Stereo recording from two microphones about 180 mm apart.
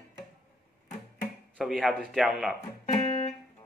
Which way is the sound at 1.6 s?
Centre (ahead or behind).